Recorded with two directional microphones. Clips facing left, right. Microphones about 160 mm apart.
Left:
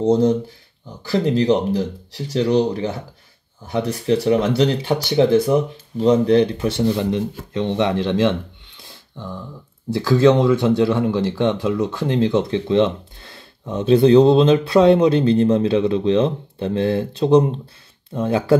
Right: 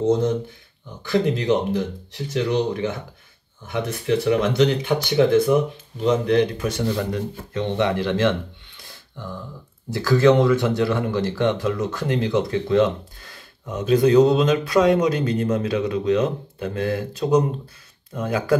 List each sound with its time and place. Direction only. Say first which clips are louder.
0.0 s speech: left 4 dB; 35° left (ahead or behind)
9.9 s speech: left 2 dB; 20° left (ahead or behind)